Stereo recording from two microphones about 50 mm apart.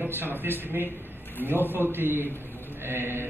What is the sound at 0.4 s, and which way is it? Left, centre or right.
A man's voice, right.